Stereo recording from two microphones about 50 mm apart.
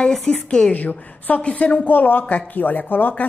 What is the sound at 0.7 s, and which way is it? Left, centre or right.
A woman's voice, left.